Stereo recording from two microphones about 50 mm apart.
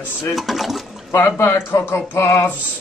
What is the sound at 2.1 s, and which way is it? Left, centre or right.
Speech, left.